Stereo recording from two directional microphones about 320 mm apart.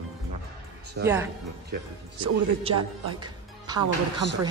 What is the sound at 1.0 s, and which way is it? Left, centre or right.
Speech, right.